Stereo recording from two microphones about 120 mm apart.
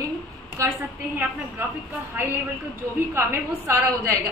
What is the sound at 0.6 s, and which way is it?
Speech, 25° right (ahead or behind).